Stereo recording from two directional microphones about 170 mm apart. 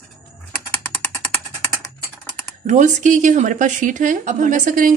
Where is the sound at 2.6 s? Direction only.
45° right (ahead or behind).